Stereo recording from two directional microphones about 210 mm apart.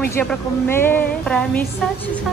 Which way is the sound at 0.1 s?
10° left (ahead or behind).